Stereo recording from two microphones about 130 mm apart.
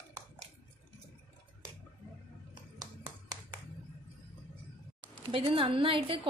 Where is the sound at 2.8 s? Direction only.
30° right (ahead or behind).